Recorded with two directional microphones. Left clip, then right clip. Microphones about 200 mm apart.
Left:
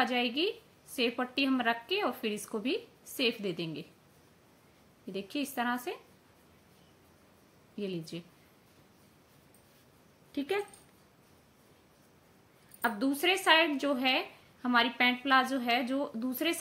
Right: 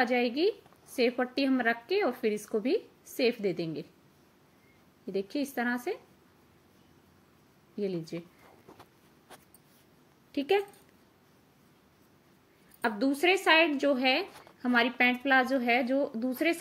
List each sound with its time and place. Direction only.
0.0 s a woman's voice: 5° right (ahead or behind)
5.1 s a woman's voice: 5° right (ahead or behind)
7.7 s a woman's voice: 5° right (ahead or behind)
10.3 s speech: 15° right (ahead or behind)
13.2 s a woman's voice: 10° right (ahead or behind)